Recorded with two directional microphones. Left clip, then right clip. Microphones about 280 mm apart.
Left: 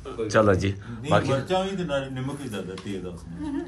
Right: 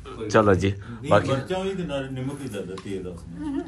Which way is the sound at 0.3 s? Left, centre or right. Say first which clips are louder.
Right 2 dB; centre.